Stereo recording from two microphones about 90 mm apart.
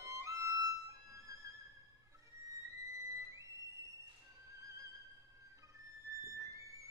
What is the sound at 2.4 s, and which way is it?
Violin, 35° right (ahead or behind).